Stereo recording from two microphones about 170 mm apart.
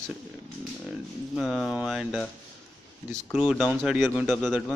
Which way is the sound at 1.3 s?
Centre (ahead or behind).